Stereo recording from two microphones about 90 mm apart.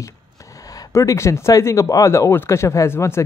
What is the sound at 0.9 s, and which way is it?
Speech, 35° left (ahead or behind).